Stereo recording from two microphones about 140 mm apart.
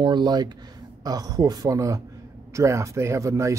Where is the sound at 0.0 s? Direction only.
30° right (ahead or behind).